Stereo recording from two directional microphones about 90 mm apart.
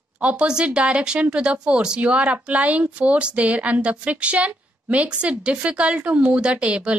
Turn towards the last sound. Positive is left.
turn(degrees=-10)  # may be behind; listen again after turning